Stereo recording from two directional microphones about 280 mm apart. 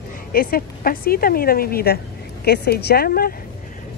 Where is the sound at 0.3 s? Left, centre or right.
Left.